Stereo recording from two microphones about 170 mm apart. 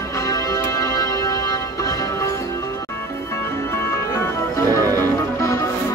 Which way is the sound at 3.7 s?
15° left (ahead or behind).